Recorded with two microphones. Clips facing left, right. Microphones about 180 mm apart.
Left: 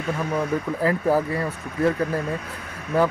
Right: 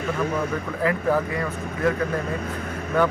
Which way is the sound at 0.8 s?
35° left (ahead or behind).